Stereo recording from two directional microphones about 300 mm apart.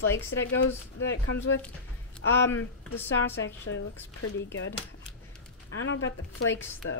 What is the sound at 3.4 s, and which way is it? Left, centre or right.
Speech, left.